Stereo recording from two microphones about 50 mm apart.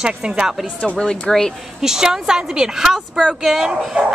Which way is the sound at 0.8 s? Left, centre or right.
Centre.